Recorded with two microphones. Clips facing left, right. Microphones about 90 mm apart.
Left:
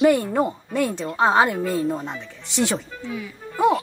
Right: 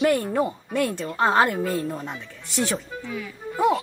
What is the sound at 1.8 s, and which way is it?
Speech, 20° left (ahead or behind).